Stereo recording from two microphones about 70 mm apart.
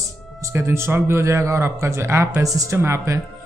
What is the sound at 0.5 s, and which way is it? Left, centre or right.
Speech, right.